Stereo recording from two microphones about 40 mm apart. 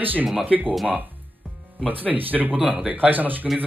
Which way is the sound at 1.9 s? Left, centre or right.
Right.